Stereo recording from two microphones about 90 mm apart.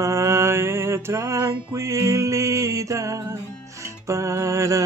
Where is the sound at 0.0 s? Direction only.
30° right (ahead or behind).